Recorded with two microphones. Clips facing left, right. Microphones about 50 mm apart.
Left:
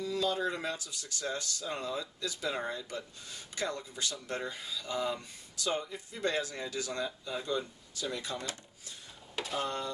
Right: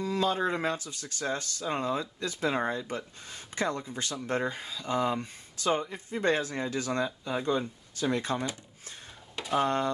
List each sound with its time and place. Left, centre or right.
0.0 s speech: right
9.5 s speech: right